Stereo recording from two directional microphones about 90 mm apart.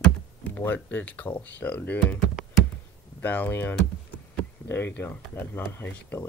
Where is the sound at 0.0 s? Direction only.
20° left (ahead or behind).